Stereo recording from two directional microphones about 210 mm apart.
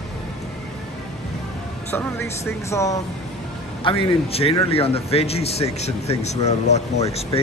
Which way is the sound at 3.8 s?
25° left (ahead or behind).